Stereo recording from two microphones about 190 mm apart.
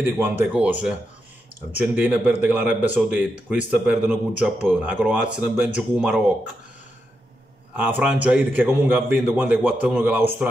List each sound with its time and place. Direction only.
0.0 s speech: 10° right (ahead or behind)
7.7 s speech: 10° right (ahead or behind)